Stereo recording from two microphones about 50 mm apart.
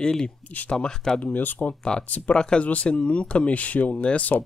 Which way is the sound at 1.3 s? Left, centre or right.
Left.